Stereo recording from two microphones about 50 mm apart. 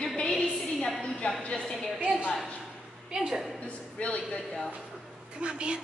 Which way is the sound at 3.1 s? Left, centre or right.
Centre.